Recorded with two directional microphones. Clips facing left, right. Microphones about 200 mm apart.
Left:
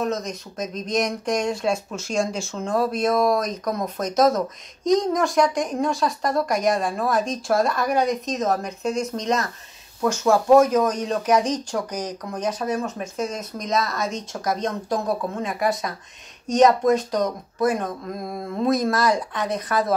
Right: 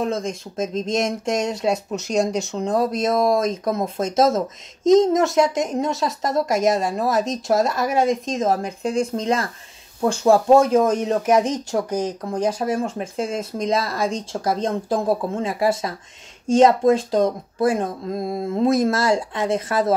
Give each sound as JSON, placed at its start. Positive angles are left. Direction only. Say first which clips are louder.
{"t": 0.0, "sound": "speech", "louder": "right 2 dB", "side_deg": -30}